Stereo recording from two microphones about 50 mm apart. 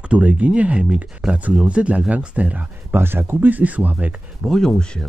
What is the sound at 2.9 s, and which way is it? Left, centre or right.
Speech, right.